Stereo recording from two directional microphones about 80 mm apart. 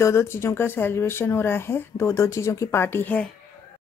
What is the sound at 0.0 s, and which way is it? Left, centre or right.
Speech, left.